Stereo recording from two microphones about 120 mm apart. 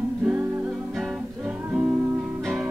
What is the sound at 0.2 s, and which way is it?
Music, 15° right (ahead or behind).